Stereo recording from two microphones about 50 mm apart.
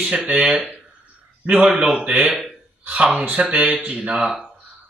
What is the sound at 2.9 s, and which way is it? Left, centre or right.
A man's voice, right.